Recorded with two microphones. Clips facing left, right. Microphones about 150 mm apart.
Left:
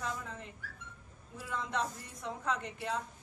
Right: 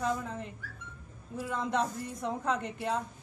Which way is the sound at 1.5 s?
50° right (ahead or behind).